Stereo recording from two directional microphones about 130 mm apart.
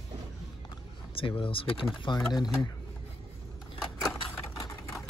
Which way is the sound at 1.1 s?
45° left (ahead or behind).